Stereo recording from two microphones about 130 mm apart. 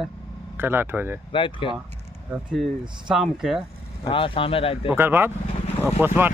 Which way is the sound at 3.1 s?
Centre (ahead or behind).